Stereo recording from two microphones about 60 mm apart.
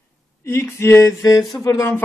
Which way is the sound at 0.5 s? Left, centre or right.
Left.